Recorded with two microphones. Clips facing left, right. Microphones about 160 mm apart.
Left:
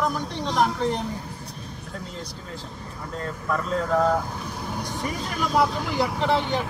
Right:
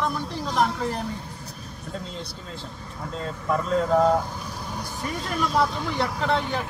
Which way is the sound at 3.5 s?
25° right (ahead or behind).